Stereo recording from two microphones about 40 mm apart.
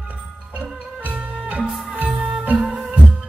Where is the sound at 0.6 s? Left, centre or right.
Right.